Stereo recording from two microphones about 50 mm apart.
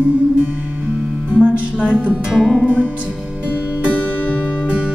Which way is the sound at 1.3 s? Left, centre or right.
Right.